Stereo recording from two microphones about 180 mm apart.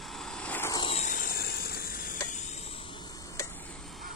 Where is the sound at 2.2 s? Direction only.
40° left (ahead or behind).